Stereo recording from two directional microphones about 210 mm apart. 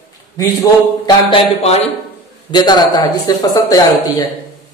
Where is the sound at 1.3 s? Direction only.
30° left (ahead or behind).